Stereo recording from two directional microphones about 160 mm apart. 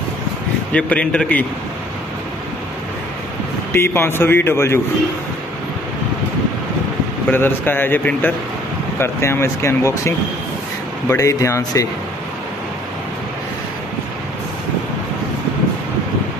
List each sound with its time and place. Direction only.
0.7 s speech: 10° left (ahead or behind)
3.7 s speech: 15° left (ahead or behind)
7.2 s speech: 10° left (ahead or behind)